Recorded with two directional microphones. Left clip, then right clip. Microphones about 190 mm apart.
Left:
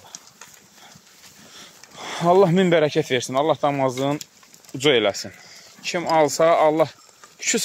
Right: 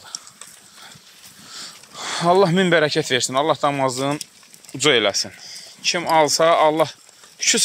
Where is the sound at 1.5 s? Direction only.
5° left (ahead or behind).